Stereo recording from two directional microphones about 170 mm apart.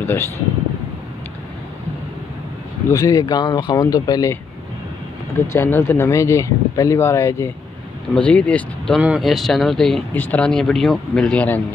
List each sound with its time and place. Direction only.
0.0 s speech: 15° left (ahead or behind)
2.9 s speech: 20° left (ahead or behind)
5.5 s speech: 15° left (ahead or behind)